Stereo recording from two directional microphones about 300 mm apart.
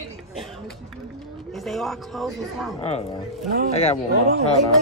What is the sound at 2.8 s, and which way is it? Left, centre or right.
Speech, left.